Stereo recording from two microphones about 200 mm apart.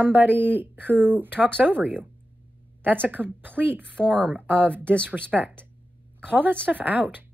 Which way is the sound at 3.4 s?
10° right (ahead or behind).